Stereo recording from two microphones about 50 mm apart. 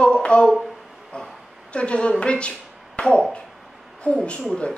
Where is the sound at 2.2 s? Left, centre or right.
Left.